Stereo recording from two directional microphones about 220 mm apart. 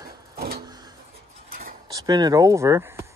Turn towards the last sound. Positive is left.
turn(degrees=-10)  # may be behind; listen again after turning